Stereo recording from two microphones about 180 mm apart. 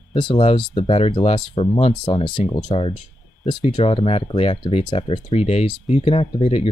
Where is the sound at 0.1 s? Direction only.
30° left (ahead or behind).